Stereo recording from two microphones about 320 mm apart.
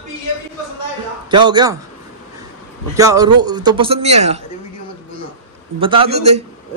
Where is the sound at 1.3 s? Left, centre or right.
Centre.